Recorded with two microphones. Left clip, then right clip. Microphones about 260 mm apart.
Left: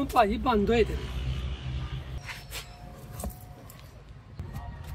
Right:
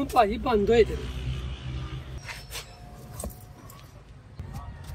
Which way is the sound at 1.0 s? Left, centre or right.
Left.